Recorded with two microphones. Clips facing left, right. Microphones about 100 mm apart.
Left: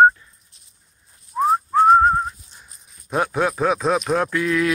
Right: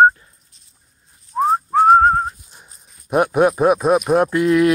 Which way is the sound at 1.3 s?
30° right (ahead or behind).